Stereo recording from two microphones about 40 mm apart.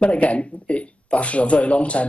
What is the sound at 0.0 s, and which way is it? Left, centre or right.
Speech, left.